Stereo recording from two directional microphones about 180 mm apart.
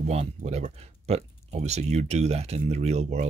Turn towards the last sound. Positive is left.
turn(degrees=-40)  # may be behind; listen again after turning